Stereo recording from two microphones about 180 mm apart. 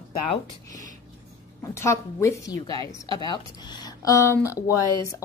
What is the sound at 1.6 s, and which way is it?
A woman's voice, 15° left (ahead or behind).